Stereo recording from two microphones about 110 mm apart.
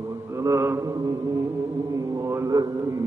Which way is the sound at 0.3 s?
25° right (ahead or behind).